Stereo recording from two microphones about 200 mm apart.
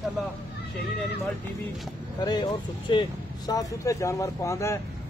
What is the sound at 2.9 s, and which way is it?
Speech, 20° left (ahead or behind).